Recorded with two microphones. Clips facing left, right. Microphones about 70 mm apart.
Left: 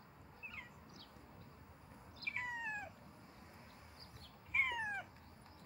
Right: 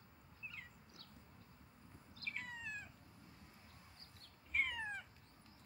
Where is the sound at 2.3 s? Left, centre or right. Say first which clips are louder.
Left 7 dB; centre.